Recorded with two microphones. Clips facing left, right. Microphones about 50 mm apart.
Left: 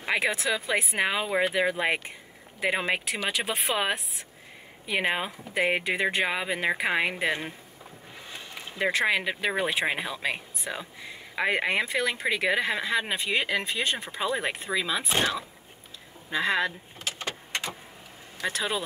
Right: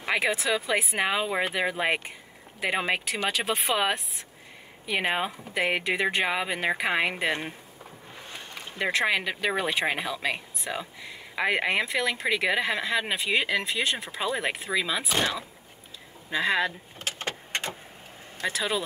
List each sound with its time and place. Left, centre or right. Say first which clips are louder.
0.0 s speech: even; centre
8.7 s speech: even; centre
15.0 s speech: even; left
16.3 s speech: right 1 dB; centre
17.0 s vehicle: right 1 dB; right
18.5 s speech: right 1 dB; centre